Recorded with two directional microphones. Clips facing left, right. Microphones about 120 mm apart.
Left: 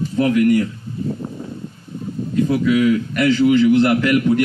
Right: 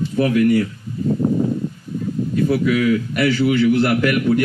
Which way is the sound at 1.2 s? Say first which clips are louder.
Right 12 dB; 45° right (ahead or behind).